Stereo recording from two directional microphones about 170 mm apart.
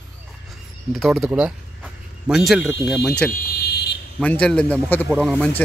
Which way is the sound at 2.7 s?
Centre (ahead or behind).